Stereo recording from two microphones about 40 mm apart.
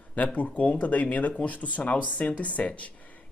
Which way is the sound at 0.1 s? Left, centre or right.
Left.